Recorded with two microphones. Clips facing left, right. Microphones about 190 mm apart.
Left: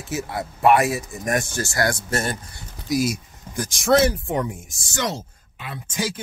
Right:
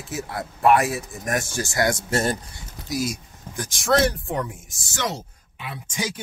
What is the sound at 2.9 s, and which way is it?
Speech, 10° left (ahead or behind).